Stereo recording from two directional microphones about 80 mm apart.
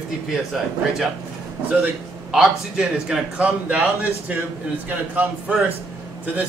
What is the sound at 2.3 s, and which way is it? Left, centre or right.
Speech, centre.